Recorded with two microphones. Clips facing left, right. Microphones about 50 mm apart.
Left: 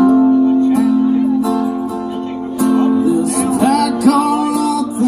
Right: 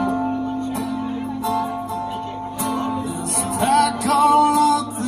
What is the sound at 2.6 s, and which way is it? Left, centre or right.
Music, left.